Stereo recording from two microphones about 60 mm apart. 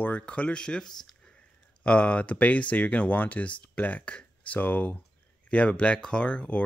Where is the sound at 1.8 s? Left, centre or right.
Left.